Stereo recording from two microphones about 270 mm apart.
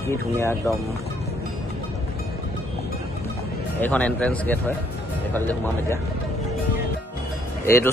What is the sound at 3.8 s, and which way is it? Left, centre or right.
A man's voice, centre.